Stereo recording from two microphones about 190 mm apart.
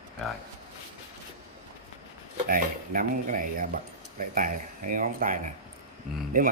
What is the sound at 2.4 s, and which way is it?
Speech, 50° right (ahead or behind).